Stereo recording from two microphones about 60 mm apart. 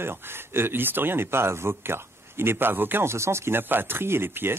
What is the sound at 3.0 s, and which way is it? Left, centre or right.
A man's voice, right.